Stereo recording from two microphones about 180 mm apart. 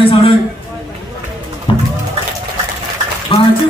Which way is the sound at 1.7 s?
30° left (ahead or behind).